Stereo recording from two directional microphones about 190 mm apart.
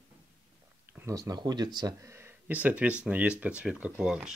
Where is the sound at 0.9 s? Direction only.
15° right (ahead or behind).